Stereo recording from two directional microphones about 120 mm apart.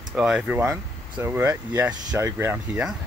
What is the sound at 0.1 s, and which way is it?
Speech, 5° right (ahead or behind).